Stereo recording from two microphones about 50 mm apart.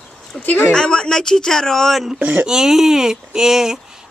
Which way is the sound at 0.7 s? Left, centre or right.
Centre.